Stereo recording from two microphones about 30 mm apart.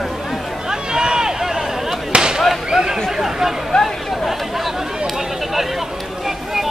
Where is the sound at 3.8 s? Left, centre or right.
Centre.